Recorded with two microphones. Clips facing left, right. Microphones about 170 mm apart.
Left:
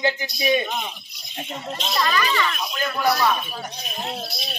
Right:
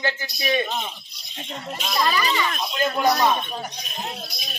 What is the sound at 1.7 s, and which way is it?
Speech, 10° right (ahead or behind).